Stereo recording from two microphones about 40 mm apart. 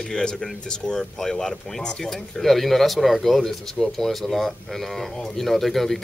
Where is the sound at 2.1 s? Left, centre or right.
Centre.